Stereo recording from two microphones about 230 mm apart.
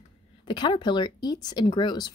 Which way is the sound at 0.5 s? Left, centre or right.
Centre.